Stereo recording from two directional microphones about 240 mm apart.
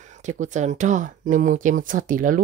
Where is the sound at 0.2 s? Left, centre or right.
Right.